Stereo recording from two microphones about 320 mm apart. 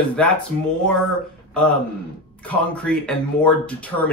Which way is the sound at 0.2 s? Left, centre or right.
Centre.